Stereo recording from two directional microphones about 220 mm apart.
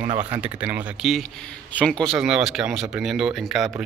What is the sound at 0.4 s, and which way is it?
Speech, 5° right (ahead or behind).